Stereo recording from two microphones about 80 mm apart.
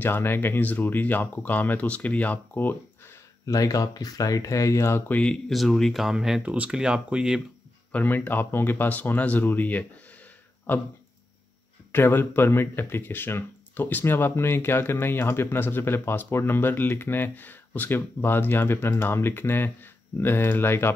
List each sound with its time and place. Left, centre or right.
0.0 s speech: left
3.4 s speech: left
5.1 s speech: centre
6.4 s speech: centre
7.9 s speech: left
11.9 s speech: left